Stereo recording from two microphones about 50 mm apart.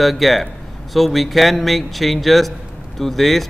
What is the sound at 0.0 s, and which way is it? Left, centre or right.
Speech, centre.